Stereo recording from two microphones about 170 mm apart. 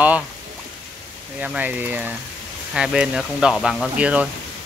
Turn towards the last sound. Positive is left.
turn(degrees=-5)  # may be behind; listen again after turning